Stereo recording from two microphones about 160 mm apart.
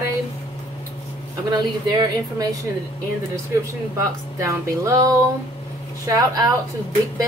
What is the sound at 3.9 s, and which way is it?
Speech, 20° right (ahead or behind).